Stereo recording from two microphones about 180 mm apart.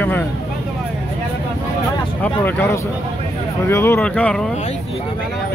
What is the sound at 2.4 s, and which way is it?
Speech, 15° left (ahead or behind).